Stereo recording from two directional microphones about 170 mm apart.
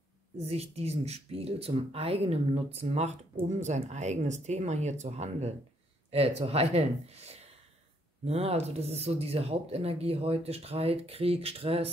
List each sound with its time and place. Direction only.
0.5 s speech: 35° right (ahead or behind)